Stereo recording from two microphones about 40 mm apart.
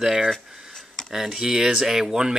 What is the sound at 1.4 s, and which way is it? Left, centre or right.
Speech, centre.